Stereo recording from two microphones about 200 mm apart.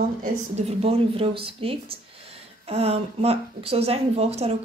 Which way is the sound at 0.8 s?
30° right (ahead or behind).